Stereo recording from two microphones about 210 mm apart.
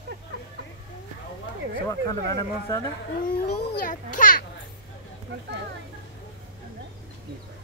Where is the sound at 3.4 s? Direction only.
45° left (ahead or behind).